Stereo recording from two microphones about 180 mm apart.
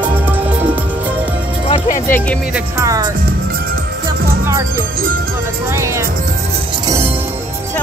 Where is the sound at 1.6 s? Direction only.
35° left (ahead or behind).